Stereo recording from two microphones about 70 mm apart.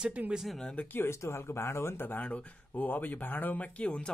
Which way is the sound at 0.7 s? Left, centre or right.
Left.